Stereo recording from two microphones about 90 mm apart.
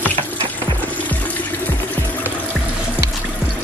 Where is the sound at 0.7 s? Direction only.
15° left (ahead or behind).